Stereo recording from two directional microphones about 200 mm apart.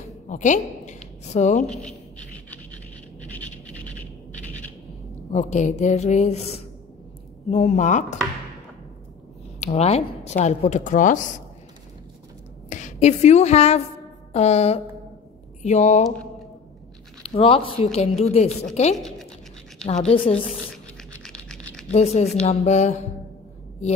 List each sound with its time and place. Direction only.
0.3 s a woman's voice: 40° left (ahead or behind)
1.7 s speech: 5° left (ahead or behind)
3.3 s a sound: 5° left (ahead or behind)
5.3 s a woman's voice: 35° left (ahead or behind)
9.6 s a woman's voice: 30° left (ahead or behind)
12.6 s a woman's voice: 35° left (ahead or behind)
17.2 s a woman's voice: 30° left (ahead or behind)
19.9 s a woman's voice: 30° left (ahead or behind)
20.7 s scratch: 5° left (ahead or behind)
21.9 s a woman's voice: 30° left (ahead or behind)